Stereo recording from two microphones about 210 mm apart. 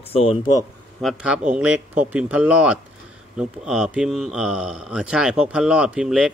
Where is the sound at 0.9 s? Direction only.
Centre (ahead or behind).